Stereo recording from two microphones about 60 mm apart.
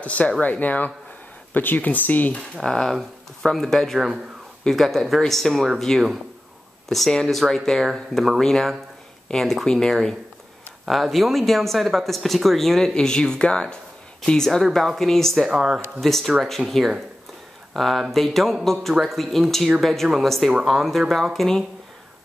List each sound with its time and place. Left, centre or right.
0.0 s speech: left
2.5 s speech: centre
15.4 s speech: centre
16.0 s speech: centre